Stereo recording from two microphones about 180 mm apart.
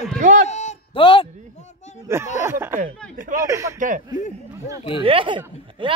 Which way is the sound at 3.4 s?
15° right (ahead or behind).